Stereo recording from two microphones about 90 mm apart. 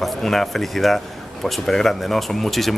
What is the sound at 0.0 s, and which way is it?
Speech, 5° left (ahead or behind).